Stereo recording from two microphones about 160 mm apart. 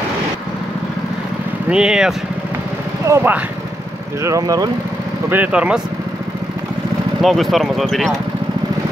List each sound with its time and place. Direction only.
1.7 s speech: 5° right (ahead or behind); by 4.6 s 20° right (ahead or behind)
5.3 s speech: 10° right (ahead or behind)
7.2 s speech: centre (ahead or behind)